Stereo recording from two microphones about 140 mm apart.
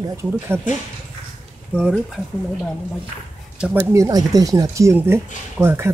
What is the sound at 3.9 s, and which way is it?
Speech, 25° right (ahead or behind).